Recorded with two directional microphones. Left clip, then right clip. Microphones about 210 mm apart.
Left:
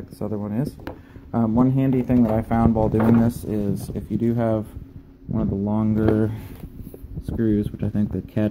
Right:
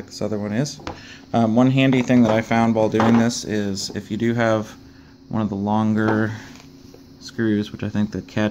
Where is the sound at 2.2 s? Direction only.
10° right (ahead or behind).